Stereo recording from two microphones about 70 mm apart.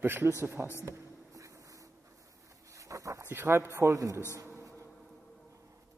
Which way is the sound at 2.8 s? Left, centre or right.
Right.